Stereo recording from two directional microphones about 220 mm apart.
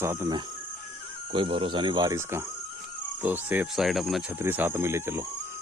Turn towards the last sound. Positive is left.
turn(degrees=-10)  # may be behind; listen again after turning